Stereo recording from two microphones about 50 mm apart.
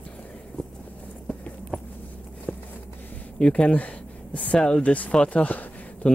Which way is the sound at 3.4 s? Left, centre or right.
Left.